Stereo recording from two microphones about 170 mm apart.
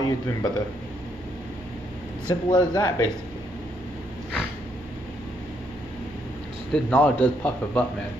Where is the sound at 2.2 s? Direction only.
25° left (ahead or behind).